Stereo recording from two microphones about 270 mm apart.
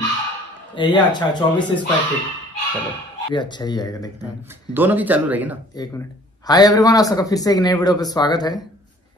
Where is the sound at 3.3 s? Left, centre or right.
Centre.